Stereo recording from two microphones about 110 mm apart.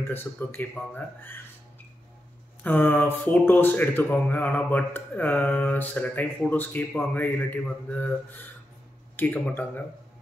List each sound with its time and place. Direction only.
0.1 s speech: 20° left (ahead or behind)
2.6 s speech: 15° left (ahead or behind)